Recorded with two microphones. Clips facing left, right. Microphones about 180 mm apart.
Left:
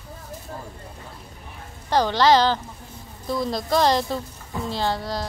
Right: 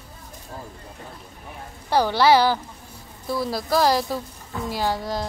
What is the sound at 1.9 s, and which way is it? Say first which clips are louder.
A woman's voice: even; 10° right (ahead or behind).